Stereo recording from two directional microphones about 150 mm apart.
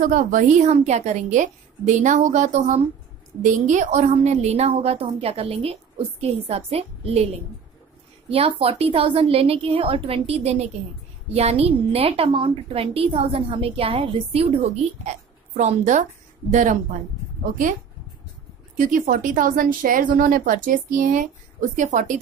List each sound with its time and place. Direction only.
0.0 s a woman's voice: 60° right (ahead or behind); by 7.2 s 40° right (ahead or behind)
8.3 s a woman's voice: 40° right (ahead or behind)
17.5 s speech: 60° right (ahead or behind)
18.8 s speech: 60° right (ahead or behind)